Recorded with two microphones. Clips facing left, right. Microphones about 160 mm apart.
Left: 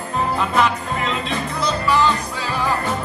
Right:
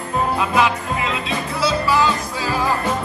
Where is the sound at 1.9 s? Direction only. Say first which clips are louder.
Even; 10° right (ahead or behind).